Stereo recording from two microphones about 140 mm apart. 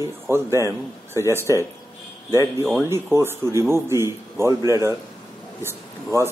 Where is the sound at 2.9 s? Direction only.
15° right (ahead or behind).